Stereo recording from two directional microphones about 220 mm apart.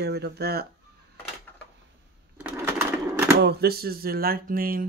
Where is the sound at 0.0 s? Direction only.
50° right (ahead or behind).